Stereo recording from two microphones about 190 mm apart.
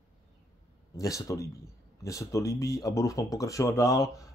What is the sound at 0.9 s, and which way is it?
Speech, 15° left (ahead or behind).